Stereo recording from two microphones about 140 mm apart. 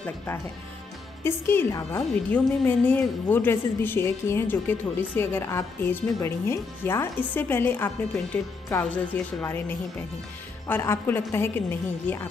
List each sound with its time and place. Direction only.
1.2 s a woman's voice: 15° left (ahead or behind)